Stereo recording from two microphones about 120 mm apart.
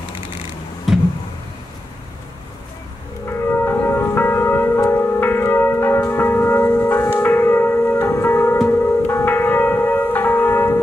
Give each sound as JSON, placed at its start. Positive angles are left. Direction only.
{"t": 0.9, "sound": "vehicle", "side_deg": -5}
{"t": 3.3, "sound": "church bell", "side_deg": 20}
{"t": 7.2, "sound": "music", "side_deg": 20}